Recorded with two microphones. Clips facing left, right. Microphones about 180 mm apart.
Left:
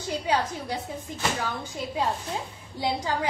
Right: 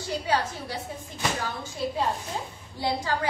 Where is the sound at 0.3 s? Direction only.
15° left (ahead or behind).